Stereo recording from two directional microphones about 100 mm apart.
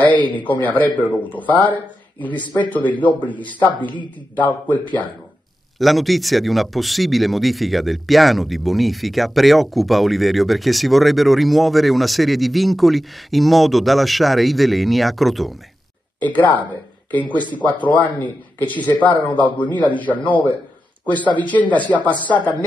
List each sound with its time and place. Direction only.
0.0 s a man's voice: 15° left (ahead or behind)
5.8 s speech: centre (ahead or behind)
16.2 s a man's voice: 15° left (ahead or behind)